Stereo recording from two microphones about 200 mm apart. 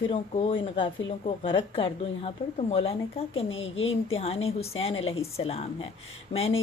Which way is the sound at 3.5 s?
75° left (ahead or behind).